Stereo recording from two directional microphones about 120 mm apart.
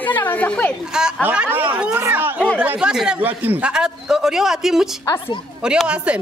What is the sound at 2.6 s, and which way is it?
A woman's voice, 10° right (ahead or behind).